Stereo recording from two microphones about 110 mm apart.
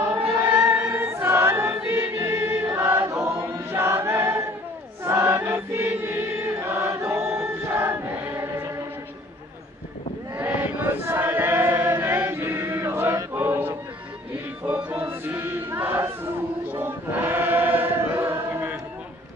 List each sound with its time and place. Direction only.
0.5 s choir: 20° right (ahead or behind)
10.3 s chant: 15° right (ahead or behind)
14.7 s choir: 15° right (ahead or behind)